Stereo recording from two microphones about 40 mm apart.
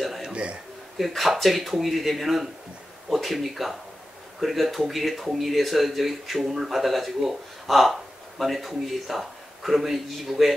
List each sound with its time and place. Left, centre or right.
0.3 s speech: right
0.9 s speech: centre